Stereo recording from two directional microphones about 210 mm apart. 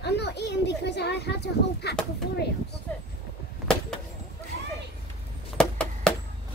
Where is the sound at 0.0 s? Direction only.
55° left (ahead or behind).